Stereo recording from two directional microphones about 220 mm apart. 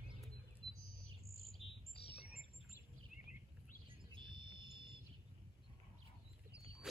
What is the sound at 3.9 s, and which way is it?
Bird, 20° right (ahead or behind).